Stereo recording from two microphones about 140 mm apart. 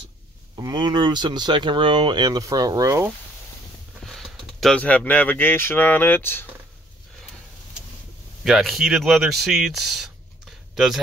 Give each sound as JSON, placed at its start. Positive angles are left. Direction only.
{"t": 0.6, "sound": "speech", "side_deg": -30}
{"t": 4.0, "sound": "speech", "side_deg": 0}
{"t": 8.5, "sound": "speech", "side_deg": 0}
{"t": 10.7, "sound": "a sound", "side_deg": 0}